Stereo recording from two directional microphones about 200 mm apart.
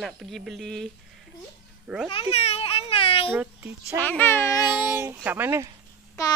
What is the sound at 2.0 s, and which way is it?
Children playing, 30° left (ahead or behind).